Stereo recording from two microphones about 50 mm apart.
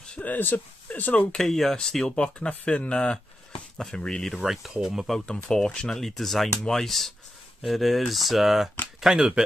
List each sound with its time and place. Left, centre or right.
0.2 s speech: left
1.3 s speech: centre
4.4 s speech: centre
5.2 s speech: centre
9.0 s speech: centre